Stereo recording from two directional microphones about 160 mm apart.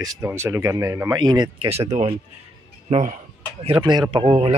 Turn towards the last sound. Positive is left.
turn(degrees=-35)  # may be behind; listen again after turning